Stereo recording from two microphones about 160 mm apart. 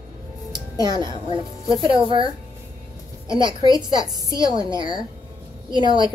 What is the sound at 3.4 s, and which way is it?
Speech, 25° left (ahead or behind).